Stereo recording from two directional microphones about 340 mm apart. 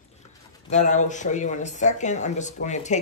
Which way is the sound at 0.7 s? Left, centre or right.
Left.